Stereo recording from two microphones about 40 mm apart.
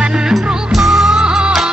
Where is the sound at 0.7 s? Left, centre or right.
Centre.